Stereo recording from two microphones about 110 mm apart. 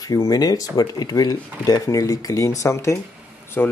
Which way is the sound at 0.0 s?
30° left (ahead or behind).